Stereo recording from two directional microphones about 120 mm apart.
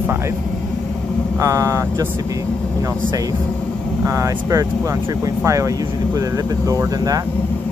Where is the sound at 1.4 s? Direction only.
25° right (ahead or behind).